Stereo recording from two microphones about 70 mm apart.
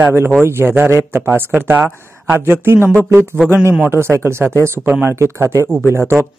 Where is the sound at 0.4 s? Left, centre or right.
Right.